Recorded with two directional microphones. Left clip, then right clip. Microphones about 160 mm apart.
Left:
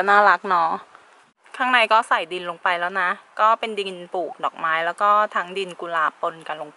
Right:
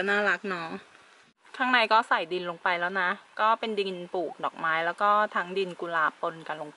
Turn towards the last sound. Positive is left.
turn(degrees=20)  # may be behind; listen again after turning